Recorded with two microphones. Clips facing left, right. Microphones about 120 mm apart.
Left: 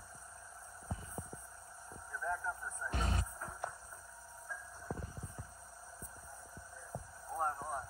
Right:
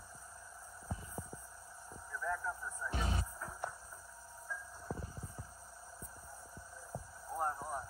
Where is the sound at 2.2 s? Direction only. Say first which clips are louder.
Even; 15° left (ahead or behind).